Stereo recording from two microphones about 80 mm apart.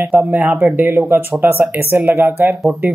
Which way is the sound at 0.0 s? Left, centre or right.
Right.